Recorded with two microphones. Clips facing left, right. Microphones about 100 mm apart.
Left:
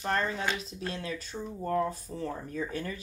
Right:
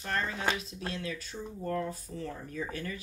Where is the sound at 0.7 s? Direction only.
30° left (ahead or behind).